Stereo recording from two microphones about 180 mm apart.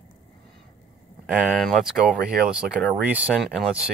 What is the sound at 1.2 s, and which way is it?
Speech, centre (ahead or behind).